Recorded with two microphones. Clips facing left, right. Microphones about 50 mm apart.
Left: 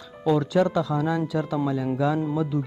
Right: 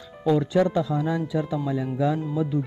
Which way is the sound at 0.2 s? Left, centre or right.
Centre.